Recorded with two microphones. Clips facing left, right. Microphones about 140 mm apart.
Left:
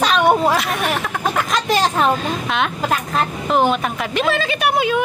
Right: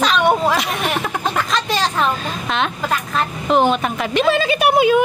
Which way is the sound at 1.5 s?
15° left (ahead or behind).